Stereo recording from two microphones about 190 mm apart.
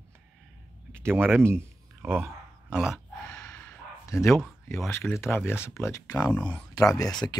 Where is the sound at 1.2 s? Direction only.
10° right (ahead or behind).